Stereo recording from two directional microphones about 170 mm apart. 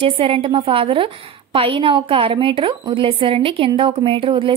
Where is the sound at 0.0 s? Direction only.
30° right (ahead or behind).